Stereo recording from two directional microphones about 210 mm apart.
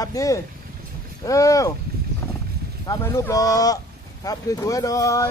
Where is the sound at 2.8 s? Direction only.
15° left (ahead or behind).